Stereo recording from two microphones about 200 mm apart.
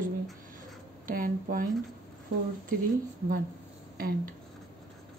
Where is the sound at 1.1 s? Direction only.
45° right (ahead or behind).